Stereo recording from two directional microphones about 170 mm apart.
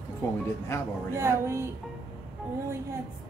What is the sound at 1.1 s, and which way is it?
Speech, 15° right (ahead or behind).